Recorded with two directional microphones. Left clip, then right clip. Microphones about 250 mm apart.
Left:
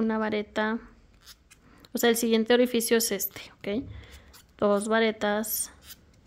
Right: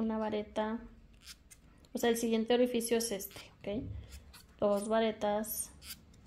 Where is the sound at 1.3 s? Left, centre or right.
Centre.